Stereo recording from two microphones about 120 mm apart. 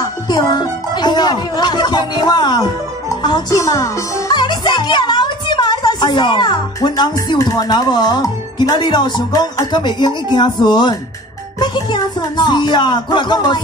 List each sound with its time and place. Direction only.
0.0 s speech: 35° left (ahead or behind)
4.3 s music: 40° left (ahead or behind)
7.4 s speech: 35° left (ahead or behind)